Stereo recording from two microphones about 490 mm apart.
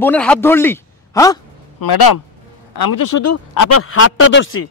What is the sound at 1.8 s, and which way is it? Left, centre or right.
Speech, left.